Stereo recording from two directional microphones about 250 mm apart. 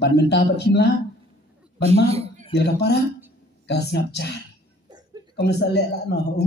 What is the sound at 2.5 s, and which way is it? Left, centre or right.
A woman's voice, left.